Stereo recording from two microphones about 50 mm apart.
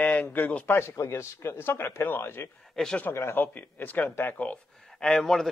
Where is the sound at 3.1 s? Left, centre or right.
Left.